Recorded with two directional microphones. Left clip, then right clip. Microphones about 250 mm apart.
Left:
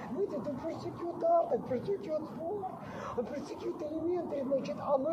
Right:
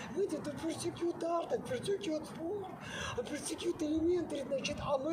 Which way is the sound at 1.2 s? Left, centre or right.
Right.